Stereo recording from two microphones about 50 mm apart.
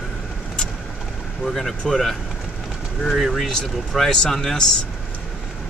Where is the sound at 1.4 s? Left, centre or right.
Centre.